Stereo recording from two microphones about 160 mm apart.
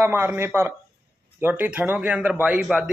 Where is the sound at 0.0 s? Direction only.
15° right (ahead or behind).